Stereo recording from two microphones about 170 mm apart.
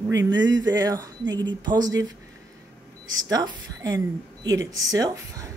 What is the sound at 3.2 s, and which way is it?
A woman's voice, 20° right (ahead or behind).